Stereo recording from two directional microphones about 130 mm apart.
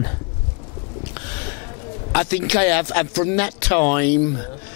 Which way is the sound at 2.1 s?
10° left (ahead or behind).